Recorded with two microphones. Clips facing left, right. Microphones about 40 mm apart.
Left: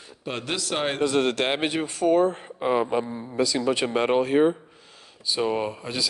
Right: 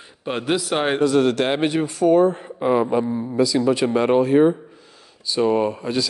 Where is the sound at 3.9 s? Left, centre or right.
Left.